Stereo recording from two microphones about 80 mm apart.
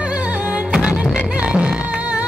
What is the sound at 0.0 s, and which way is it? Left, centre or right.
Music, centre.